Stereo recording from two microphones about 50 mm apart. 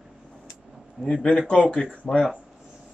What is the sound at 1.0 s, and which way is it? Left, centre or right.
Speech, left.